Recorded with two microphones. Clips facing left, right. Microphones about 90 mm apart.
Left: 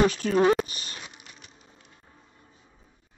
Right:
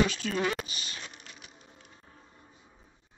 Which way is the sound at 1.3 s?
5° right (ahead or behind).